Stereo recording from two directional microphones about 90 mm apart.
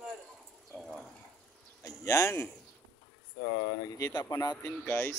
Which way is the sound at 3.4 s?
70° left (ahead or behind).